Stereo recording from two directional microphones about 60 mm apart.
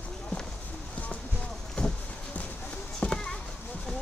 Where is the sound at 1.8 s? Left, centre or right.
Centre.